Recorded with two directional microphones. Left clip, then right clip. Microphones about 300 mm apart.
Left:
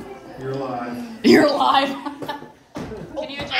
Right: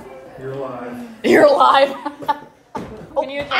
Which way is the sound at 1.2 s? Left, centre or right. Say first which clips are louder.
Right 4 dB; centre.